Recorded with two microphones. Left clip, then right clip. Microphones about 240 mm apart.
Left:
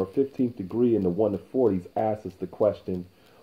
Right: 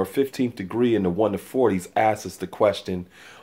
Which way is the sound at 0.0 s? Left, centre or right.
Right.